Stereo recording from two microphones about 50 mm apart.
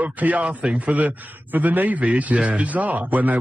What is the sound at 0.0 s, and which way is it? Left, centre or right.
Speech, right.